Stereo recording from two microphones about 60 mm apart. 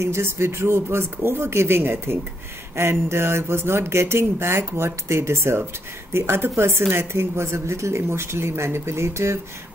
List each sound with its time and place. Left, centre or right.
0.0 s speech: right